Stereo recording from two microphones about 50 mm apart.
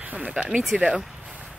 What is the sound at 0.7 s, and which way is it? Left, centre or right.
Speech, centre.